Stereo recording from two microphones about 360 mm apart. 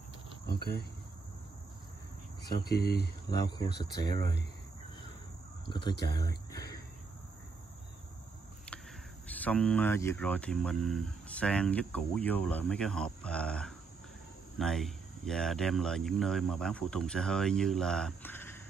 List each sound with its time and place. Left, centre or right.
0.5 s speech: left
2.6 s speech: left
3.3 s speech: centre
3.6 s speech: left
4.1 s speech: centre
5.7 s speech: centre
9.4 s speech: centre